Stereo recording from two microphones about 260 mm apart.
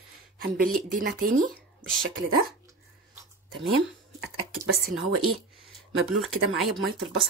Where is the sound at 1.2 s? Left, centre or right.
Right.